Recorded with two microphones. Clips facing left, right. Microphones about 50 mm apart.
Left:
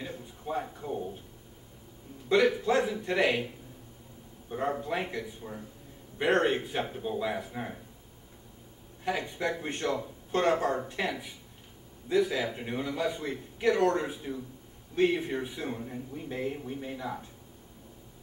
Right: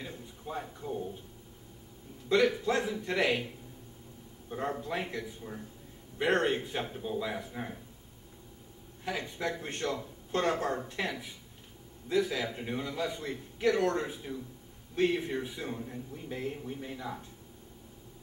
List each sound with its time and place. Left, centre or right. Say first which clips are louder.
0.0 s a sound: left 3 dB; centre
2.5 s a man's voice: left 3 dB; centre
4.5 s a man's voice: left 3 dB; centre
9.0 s a man's voice: left 3 dB; centre